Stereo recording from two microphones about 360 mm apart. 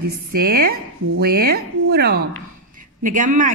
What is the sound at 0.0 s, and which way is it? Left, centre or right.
Speech, right.